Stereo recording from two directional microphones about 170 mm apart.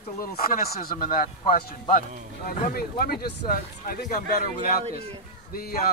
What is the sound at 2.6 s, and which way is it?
Speech, 55° left (ahead or behind).